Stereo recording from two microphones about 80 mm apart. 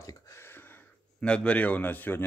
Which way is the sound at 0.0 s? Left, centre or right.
Left.